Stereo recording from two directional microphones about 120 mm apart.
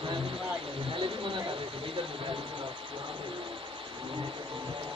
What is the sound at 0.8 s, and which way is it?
Speech, 45° right (ahead or behind).